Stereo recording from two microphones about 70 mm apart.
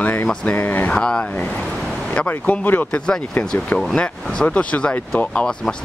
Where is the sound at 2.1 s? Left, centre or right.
Left.